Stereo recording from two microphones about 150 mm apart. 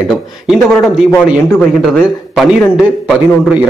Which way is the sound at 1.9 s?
Centre (ahead or behind).